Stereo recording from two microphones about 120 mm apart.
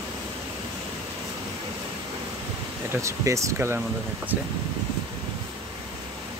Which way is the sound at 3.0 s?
25° right (ahead or behind).